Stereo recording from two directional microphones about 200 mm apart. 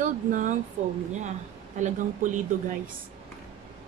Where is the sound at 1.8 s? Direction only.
40° right (ahead or behind).